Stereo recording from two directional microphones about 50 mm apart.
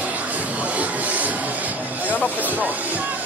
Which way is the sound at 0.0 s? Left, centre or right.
Right.